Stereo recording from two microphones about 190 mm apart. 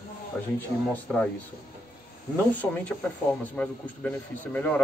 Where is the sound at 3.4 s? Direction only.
5° left (ahead or behind).